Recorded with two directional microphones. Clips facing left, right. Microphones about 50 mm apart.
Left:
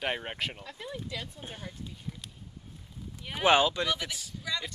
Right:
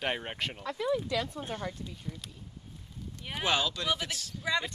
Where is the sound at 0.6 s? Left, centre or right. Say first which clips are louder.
Right 9 dB; right.